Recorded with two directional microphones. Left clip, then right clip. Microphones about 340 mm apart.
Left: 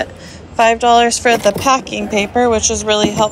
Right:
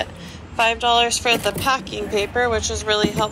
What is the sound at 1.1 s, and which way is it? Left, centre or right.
Speech, left.